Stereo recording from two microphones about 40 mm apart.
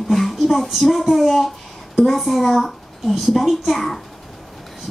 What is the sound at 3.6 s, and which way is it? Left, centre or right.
Speech, centre.